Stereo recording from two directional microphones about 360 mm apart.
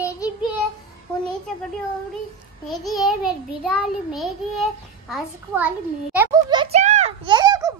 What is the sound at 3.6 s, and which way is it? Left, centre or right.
Child singing, centre.